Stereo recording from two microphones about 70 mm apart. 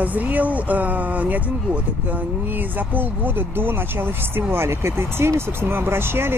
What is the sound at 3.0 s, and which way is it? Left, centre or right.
Speech, right.